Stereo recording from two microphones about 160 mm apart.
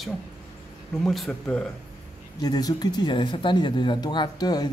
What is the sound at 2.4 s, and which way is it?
Speech, 25° left (ahead or behind).